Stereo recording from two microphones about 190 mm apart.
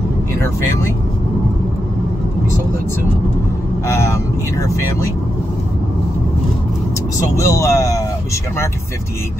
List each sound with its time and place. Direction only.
3.8 s speech: 15° left (ahead or behind)
7.3 s speech: 15° left (ahead or behind)